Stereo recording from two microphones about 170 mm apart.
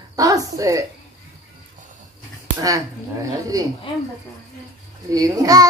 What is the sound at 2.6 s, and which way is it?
A woman's voice, 20° right (ahead or behind).